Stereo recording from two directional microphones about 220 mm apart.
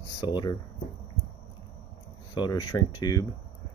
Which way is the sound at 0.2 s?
20° left (ahead or behind).